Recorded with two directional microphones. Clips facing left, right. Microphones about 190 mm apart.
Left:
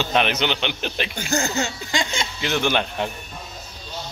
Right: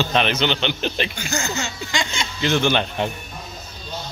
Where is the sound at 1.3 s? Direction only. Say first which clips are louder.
Left 6 dB; 35° left (ahead or behind).